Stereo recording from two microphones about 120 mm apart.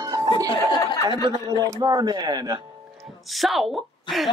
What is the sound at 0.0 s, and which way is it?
Music, 30° right (ahead or behind).